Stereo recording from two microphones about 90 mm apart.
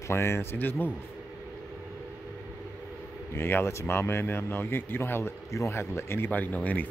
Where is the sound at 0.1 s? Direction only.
30° left (ahead or behind).